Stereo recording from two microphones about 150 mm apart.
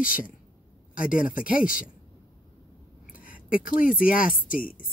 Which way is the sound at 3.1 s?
65° left (ahead or behind).